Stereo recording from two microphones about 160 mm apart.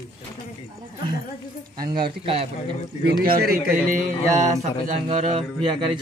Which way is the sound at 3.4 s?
65° right (ahead or behind).